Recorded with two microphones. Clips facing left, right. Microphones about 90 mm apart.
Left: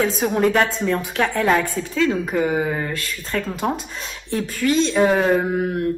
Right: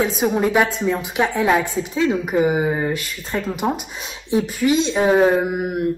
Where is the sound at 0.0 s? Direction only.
10° right (ahead or behind).